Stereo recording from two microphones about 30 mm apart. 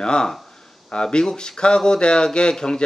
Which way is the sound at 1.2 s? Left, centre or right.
Centre.